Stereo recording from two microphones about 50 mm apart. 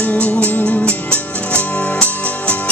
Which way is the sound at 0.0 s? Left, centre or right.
Left.